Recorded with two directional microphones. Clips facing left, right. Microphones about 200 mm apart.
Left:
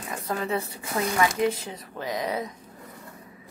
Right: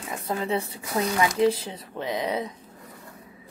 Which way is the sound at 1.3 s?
30° right (ahead or behind).